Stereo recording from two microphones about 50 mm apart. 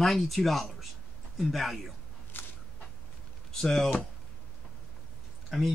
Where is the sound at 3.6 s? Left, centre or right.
Centre.